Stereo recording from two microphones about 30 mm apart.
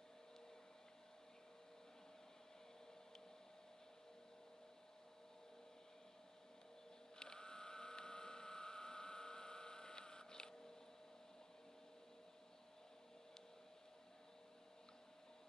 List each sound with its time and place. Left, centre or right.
7.2 s printer: left